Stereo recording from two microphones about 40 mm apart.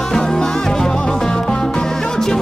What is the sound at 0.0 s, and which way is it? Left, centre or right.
Music, centre.